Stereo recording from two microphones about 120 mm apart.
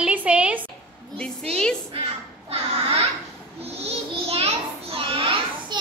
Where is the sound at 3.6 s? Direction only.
55° right (ahead or behind).